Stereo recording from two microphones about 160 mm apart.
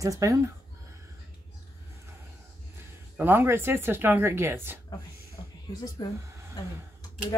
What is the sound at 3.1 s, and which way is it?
Speech, 15° right (ahead or behind).